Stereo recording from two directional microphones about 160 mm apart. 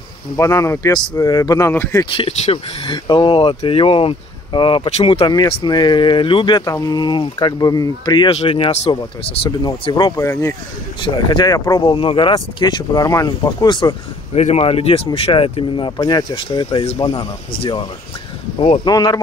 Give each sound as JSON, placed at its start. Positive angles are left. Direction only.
{"t": 0.4, "sound": "speech", "side_deg": 20}
{"t": 2.1, "sound": "speech", "side_deg": 35}
{"t": 14.3, "sound": "speech", "side_deg": 45}
{"t": 18.9, "sound": "speech", "side_deg": 25}